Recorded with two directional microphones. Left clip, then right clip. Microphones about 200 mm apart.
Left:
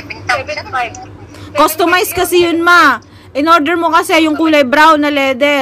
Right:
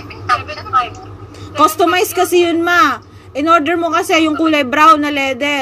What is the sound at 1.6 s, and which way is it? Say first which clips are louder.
A woman's voice: left 1 dB; 45° left (ahead or behind).